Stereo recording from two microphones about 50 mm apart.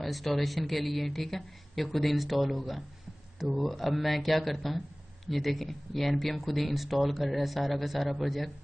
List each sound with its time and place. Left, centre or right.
0.0 s a man's voice: centre